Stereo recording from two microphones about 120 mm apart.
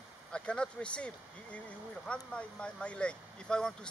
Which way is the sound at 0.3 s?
10° left (ahead or behind).